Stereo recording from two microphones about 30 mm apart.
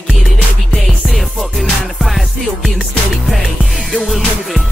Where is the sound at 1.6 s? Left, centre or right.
Centre.